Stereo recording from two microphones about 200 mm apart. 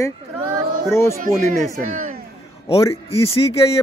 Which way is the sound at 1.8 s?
40° right (ahead or behind).